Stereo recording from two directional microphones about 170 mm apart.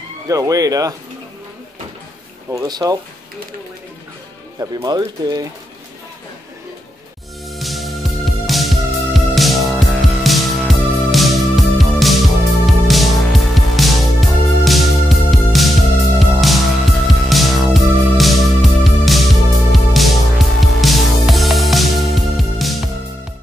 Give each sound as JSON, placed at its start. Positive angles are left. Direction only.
{"t": 0.3, "sound": "speech", "side_deg": -20}
{"t": 2.5, "sound": "speech", "side_deg": -20}
{"t": 4.6, "sound": "speech", "side_deg": -20}
{"t": 7.4, "sound": "music", "side_deg": 0}